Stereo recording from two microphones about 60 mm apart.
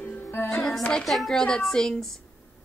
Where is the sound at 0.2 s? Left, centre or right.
Left.